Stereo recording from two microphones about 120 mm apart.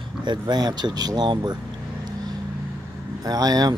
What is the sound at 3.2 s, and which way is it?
Speech, 30° right (ahead or behind).